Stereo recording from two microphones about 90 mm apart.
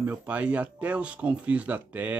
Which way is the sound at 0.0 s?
20° right (ahead or behind).